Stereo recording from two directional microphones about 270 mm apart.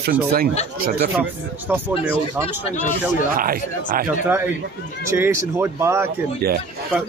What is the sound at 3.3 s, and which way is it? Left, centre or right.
Speech, right.